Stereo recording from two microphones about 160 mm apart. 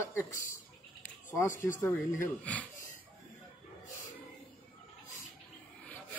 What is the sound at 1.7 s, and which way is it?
Speech, 15° left (ahead or behind).